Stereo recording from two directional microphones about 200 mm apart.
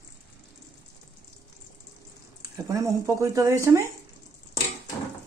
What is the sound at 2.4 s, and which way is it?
Speech, 15° right (ahead or behind).